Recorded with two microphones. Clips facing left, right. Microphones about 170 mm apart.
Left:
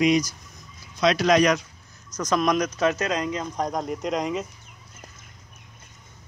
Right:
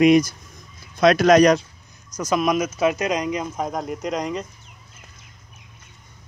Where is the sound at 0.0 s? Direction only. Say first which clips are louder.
Right 6 dB; 55° right (ahead or behind); by 1.7 s 35° right (ahead or behind).